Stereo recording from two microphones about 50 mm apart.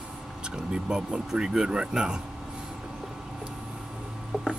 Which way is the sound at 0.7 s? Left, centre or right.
Centre.